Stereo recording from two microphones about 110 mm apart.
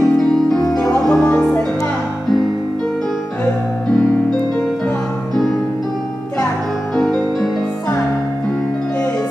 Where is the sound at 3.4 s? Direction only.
10° left (ahead or behind).